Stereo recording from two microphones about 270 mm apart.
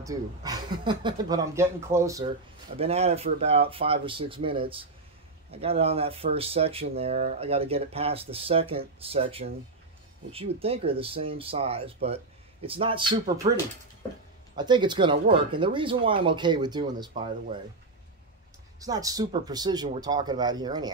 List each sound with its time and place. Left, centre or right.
0.0 s speech: centre
2.8 s speech: right
18.8 s speech: centre